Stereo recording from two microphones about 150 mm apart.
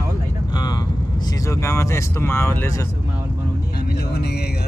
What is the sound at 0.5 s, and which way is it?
Vehicle, 30° left (ahead or behind).